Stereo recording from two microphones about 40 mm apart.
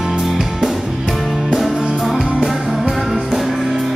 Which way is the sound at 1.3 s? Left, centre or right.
Centre.